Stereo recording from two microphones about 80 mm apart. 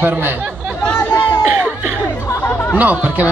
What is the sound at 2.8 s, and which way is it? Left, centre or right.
Speech, right.